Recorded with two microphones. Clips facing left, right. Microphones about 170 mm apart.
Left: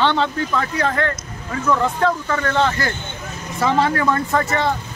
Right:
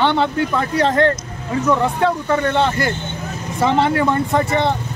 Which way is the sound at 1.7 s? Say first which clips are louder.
Right 1 dB; 15° right (ahead or behind).